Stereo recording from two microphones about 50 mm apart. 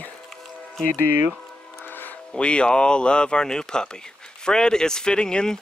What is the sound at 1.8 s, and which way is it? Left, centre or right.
Music, left.